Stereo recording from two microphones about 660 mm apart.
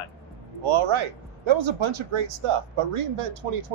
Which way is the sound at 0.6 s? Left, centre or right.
Right.